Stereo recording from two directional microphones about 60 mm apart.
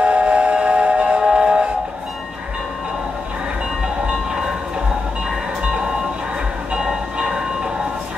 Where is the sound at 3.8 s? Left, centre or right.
Centre.